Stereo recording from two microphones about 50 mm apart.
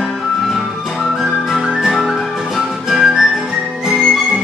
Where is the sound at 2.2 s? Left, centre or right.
Centre.